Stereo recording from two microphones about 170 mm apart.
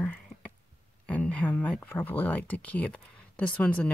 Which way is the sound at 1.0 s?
10° left (ahead or behind).